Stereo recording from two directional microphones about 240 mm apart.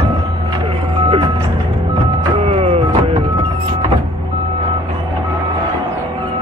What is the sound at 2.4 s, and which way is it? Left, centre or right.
Music, right.